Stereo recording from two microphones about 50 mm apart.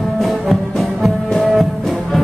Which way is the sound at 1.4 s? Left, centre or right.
Centre.